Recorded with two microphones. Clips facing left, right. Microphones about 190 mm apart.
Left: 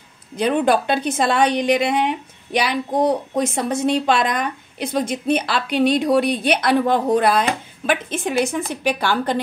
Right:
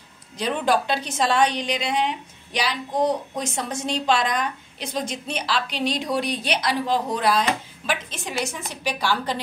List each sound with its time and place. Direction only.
0.4 s a woman's voice: 55° left (ahead or behind)